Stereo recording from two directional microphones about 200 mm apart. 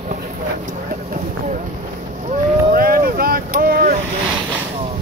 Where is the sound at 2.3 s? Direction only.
45° right (ahead or behind).